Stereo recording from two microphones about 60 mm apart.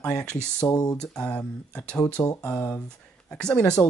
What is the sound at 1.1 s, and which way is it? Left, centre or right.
Speech, centre.